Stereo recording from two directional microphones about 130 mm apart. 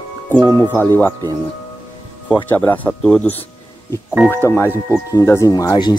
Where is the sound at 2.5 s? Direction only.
15° left (ahead or behind).